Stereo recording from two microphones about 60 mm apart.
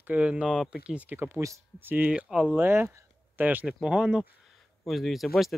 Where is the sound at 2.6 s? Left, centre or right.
Right.